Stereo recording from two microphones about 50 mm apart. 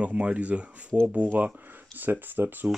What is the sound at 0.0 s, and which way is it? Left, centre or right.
Speech, right.